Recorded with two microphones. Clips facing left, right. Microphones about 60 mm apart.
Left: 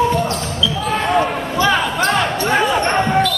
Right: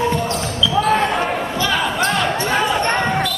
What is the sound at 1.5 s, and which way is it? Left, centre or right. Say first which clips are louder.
Basketball bounce: left 7 dB; left.